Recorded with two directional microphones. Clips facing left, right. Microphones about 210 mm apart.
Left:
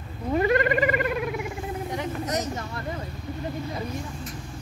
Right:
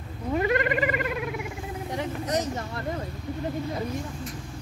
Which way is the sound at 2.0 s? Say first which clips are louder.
Right 2 dB; 30° right (ahead or behind).